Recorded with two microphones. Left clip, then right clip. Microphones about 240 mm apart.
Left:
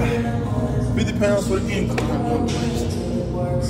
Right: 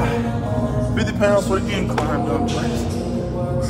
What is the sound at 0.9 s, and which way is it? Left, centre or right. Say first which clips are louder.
Speech: right 3 dB; centre.